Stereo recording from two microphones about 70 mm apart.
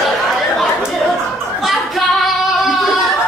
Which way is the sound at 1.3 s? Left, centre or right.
Centre.